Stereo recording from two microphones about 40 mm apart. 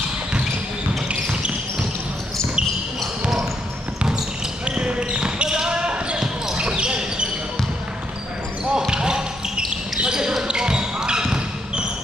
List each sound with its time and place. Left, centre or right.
4.6 s basketball bounce: right
8.7 s basketball bounce: centre